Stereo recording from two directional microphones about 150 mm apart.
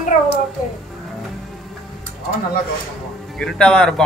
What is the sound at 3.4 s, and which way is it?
Speech, 5° left (ahead or behind).